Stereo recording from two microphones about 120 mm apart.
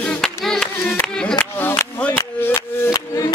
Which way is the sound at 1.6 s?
20° left (ahead or behind).